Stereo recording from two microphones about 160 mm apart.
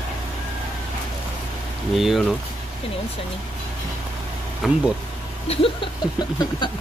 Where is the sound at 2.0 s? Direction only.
Centre (ahead or behind).